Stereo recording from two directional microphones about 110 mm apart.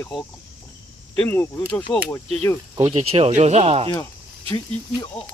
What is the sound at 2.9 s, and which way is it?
Speech, 60° right (ahead or behind).